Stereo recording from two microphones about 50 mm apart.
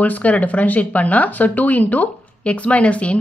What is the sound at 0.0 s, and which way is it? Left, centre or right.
Speech, left.